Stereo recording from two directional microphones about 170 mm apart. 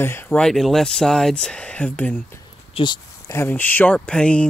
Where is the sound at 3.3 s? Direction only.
10° left (ahead or behind).